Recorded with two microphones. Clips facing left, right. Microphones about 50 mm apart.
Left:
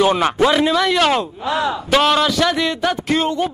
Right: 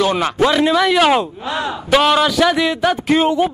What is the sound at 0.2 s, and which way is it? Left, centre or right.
A man's voice, centre.